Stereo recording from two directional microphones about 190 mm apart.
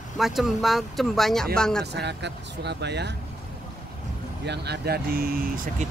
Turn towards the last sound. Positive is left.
turn(degrees=-50)  # may be behind; listen again after turning